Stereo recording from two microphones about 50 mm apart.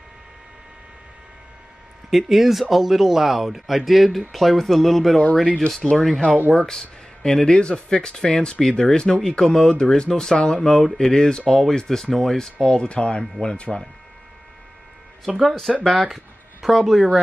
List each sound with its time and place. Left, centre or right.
2.0 s speech: centre
5.7 s speech: centre
10.6 s speech: centre
15.2 s speech: centre